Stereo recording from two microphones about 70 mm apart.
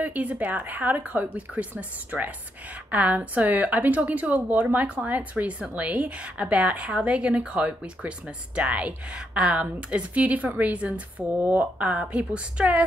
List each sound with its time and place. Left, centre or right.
0.0 s a woman's voice: right